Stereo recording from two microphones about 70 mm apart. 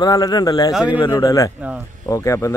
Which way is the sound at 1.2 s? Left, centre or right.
Left.